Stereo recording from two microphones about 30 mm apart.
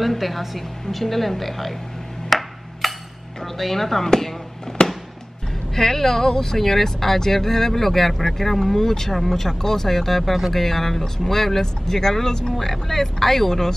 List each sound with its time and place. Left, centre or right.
0.0 s a woman's voice: centre
2.2 s a sound: centre
3.5 s speech: centre
4.8 s music: left
5.8 s speech: centre
12.5 s speech: centre